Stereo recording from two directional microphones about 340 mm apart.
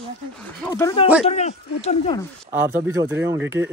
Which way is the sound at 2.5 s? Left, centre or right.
Centre.